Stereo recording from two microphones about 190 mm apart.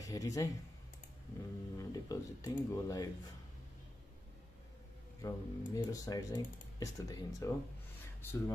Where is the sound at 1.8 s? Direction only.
20° left (ahead or behind).